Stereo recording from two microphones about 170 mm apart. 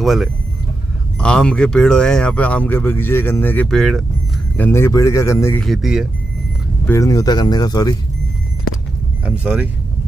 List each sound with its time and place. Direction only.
0.0 s speech: centre (ahead or behind)
4.6 s speech: 15° left (ahead or behind)
5.6 s speech: centre (ahead or behind)
6.9 s speech: 20° left (ahead or behind)
9.2 s speech: 10° right (ahead or behind)